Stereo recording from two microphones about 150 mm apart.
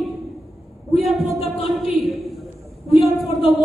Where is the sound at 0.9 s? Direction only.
Centre (ahead or behind).